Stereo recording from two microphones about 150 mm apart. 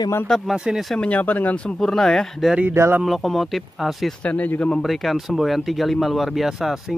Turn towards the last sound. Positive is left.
turn(degrees=0)  # may be behind; listen again after turning